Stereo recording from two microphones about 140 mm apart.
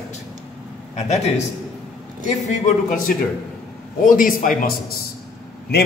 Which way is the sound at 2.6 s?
80° left.